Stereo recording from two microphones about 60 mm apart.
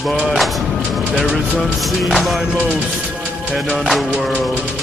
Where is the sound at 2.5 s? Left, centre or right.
Left.